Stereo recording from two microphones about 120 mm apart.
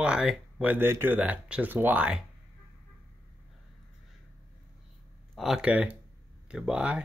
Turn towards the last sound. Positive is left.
turn(degrees=-10)  # may be behind; listen again after turning